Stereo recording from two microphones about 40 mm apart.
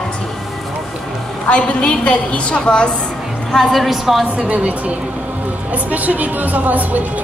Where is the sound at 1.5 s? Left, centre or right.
Left.